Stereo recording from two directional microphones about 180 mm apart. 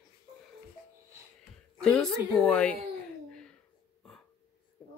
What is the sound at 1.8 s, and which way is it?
Speech, 5° left (ahead or behind).